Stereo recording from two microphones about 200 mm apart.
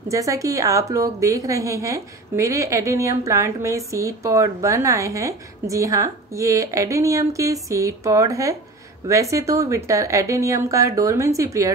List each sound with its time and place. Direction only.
0.1 s a woman's voice: 15° right (ahead or behind)